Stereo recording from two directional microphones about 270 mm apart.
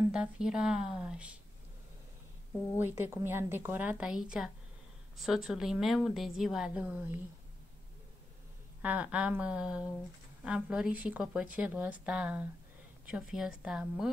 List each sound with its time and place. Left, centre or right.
0.1 s speech: centre
2.8 s speech: centre
8.8 s speech: centre